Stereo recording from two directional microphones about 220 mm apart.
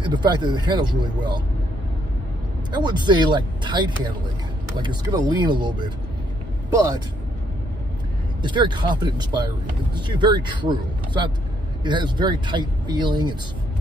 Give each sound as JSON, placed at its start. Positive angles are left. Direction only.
{"t": 0.0, "sound": "speech", "side_deg": -20}
{"t": 2.7, "sound": "speech", "side_deg": -20}
{"t": 8.4, "sound": "speech", "side_deg": -20}